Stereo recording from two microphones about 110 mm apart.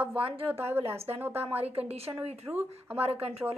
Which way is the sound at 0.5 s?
20° right (ahead or behind).